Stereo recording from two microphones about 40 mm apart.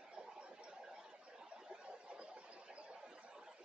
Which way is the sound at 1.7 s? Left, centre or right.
Right.